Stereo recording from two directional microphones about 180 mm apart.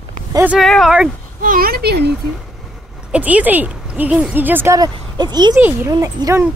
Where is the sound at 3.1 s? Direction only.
10° right (ahead or behind); by 5.5 s 25° right (ahead or behind).